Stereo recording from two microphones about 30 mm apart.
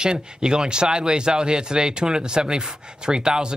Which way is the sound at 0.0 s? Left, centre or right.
Right.